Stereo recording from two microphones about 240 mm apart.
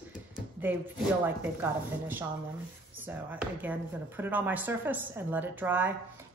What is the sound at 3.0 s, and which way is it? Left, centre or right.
Speech, centre.